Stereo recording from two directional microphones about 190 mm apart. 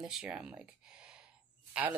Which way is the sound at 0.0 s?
5° right (ahead or behind).